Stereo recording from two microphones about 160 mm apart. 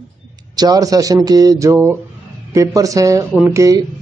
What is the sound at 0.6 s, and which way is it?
Speech, 25° right (ahead or behind).